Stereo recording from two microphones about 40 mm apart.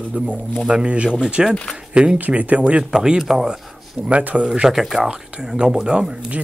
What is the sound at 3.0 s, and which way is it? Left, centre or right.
Speech, centre.